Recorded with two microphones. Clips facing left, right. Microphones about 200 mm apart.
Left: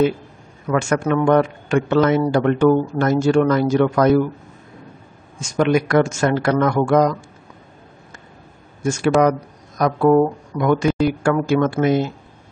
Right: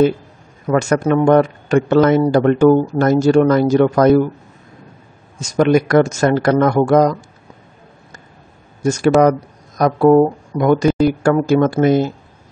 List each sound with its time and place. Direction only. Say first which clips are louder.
0.7 s a man's voice: right 4 dB; 40° right (ahead or behind)
5.4 s a man's voice: right 4 dB; 40° right (ahead or behind)
8.8 s a man's voice: right 4 dB; 40° right (ahead or behind)